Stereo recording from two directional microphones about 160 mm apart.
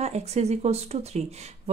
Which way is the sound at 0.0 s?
40° right (ahead or behind).